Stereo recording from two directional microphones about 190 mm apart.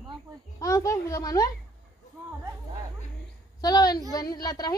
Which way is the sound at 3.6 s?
20° left (ahead or behind).